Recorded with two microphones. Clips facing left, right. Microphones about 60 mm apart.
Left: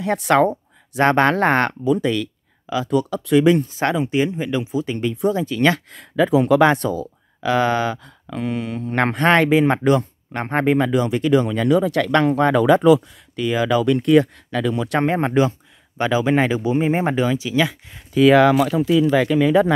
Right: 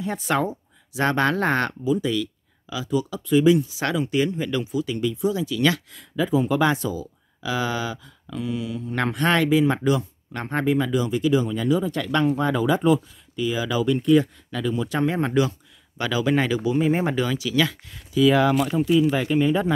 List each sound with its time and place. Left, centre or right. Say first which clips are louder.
0.0 s speech: left 8 dB; left
3.8 s speech: left 3 dB; left
6.6 s speech: left 6 dB; left
15.0 s speech: left 4 dB; left
18.1 s speech: left 5 dB; left